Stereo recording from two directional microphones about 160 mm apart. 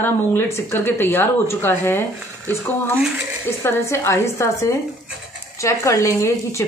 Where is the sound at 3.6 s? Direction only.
15° left (ahead or behind).